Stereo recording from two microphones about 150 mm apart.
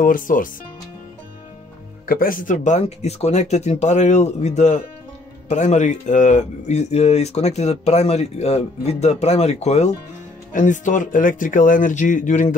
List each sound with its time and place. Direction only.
0.0 s speech: 65° left (ahead or behind)
2.0 s speech: 70° left (ahead or behind); by 2.8 s 55° left (ahead or behind)
2.8 s speech: 45° left (ahead or behind)
10.5 s speech: 60° left (ahead or behind)